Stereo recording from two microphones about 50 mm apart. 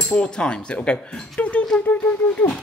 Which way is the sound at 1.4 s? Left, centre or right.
Left.